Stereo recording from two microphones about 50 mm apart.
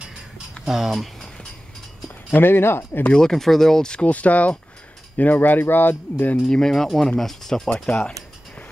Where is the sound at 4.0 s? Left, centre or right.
Left.